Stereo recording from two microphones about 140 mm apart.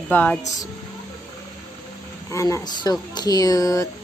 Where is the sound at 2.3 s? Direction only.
20° left (ahead or behind).